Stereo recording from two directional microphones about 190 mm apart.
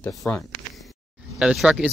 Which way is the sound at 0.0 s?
5° left (ahead or behind).